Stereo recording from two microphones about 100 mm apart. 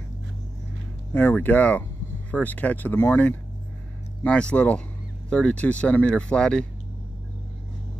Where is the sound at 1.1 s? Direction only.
20° left (ahead or behind).